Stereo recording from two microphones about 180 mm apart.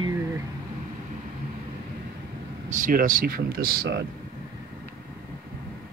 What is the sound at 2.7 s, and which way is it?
Speech, 45° right (ahead or behind).